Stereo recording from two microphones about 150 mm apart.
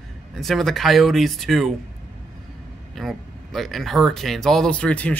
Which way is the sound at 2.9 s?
Centre (ahead or behind).